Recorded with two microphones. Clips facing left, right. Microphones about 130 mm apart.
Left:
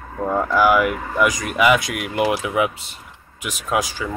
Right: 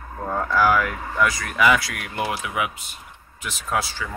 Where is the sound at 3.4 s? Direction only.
15° left (ahead or behind).